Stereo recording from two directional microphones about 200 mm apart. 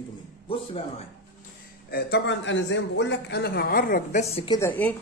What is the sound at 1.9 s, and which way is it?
A man's voice, 60° left (ahead or behind).